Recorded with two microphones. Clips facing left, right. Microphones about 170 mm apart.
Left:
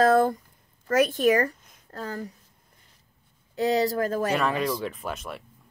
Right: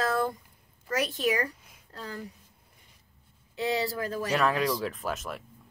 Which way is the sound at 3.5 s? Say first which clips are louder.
Left 6 dB; 40° left (ahead or behind).